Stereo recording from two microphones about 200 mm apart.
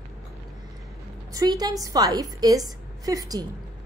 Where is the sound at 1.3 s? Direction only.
20° right (ahead or behind).